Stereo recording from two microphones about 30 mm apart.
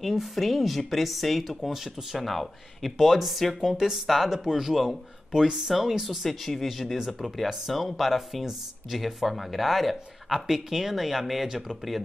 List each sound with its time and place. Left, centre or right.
0.0 s speech: centre
3.7 s speech: centre
10.3 s speech: centre